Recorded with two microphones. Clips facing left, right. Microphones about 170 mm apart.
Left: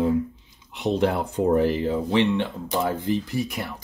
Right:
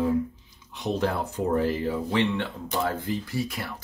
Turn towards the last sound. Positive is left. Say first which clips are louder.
# left 3 dB
turn(degrees=20)  # may be behind; listen again after turning